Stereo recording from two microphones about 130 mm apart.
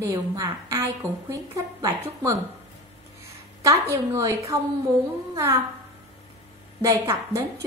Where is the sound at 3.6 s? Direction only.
25° right (ahead or behind).